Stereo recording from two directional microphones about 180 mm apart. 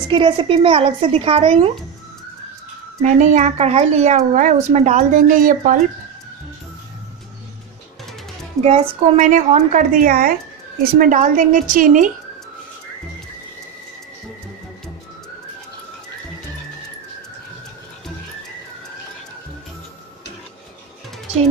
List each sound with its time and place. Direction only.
0.1 s speech: 30° right (ahead or behind)
3.0 s speech: 40° right (ahead or behind)
8.6 s a woman's voice: 35° right (ahead or behind)